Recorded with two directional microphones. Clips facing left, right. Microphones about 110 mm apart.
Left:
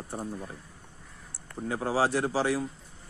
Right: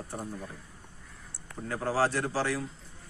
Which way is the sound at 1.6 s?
15° left (ahead or behind).